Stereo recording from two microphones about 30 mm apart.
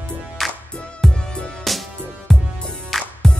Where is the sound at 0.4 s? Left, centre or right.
Centre.